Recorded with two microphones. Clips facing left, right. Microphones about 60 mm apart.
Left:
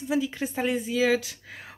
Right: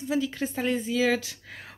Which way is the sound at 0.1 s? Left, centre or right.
Centre.